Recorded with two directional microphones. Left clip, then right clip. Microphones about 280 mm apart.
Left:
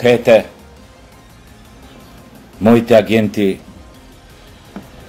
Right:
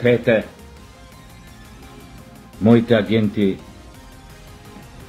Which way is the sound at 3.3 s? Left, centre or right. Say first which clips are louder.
Left 4 dB; centre.